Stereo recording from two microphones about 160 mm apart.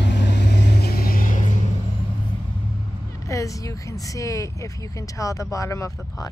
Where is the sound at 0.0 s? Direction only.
90° left; by 1.6 s 55° left (ahead or behind).